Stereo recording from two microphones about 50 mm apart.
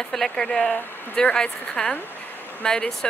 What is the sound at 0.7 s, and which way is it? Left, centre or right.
Speech, left.